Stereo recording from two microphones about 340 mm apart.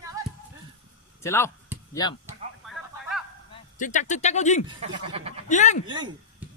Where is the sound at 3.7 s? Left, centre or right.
Left.